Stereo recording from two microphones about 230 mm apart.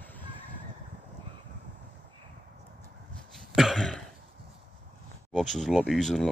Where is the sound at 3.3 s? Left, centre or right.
Centre.